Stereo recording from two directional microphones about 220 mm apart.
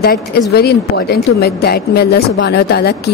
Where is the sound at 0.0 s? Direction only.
45° left (ahead or behind).